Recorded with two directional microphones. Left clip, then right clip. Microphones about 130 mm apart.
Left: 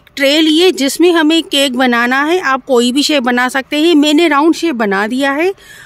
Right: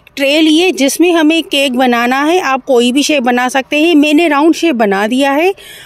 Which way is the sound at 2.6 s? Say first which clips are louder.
Right 1 dB; 10° right (ahead or behind).